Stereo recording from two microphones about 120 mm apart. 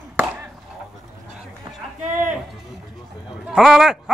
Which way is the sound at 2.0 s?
90° right.